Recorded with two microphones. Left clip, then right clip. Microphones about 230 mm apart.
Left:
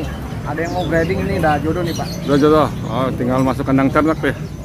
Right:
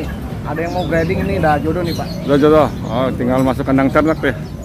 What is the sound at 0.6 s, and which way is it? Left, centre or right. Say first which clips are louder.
Speech: even; right.